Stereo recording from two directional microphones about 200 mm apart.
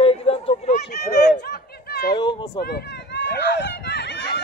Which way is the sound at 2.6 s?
55° left (ahead or behind).